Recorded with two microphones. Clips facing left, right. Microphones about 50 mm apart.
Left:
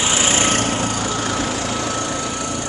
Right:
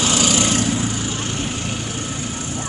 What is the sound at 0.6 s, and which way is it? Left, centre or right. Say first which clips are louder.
Vehicle: left 1 dB; left.